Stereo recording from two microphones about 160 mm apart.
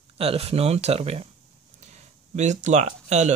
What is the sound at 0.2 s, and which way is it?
Speech, 40° right (ahead or behind).